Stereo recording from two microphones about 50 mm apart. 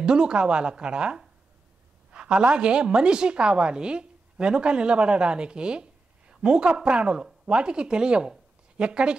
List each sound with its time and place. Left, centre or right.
0.0 s a woman's voice: centre